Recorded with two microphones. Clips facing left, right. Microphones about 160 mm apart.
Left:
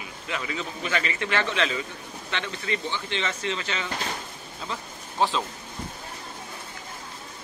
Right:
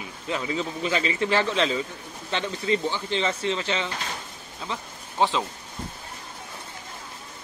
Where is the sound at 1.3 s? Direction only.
30° right (ahead or behind).